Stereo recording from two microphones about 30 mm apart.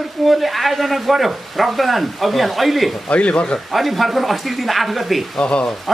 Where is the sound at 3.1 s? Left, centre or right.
Left.